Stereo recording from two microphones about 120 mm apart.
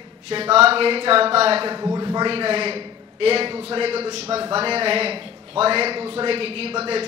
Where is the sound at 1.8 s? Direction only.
30° right (ahead or behind).